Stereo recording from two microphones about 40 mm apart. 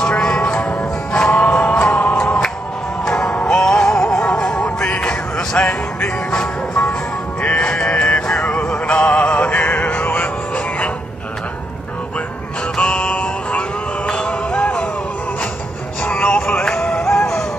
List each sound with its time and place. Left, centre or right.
0.1 s music: left
12.7 s music: left
16.0 s music: left
16.6 s music: centre